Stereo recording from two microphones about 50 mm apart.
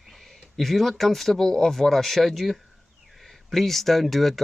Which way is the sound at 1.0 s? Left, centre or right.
Centre.